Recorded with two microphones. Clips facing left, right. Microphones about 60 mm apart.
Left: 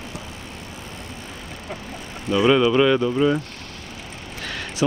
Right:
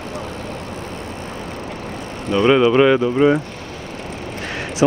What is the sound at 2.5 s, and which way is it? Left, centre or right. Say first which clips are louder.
Speech: right 6 dB; right.